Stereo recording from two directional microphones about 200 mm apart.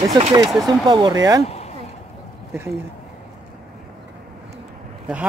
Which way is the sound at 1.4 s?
30° left (ahead or behind).